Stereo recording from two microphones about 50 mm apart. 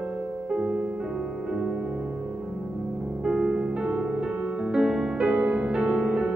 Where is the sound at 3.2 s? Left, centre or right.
Centre.